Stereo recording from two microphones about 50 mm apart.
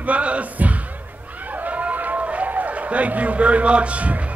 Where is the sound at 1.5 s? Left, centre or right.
Right.